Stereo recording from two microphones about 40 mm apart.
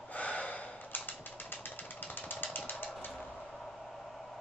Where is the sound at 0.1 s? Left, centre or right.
Left.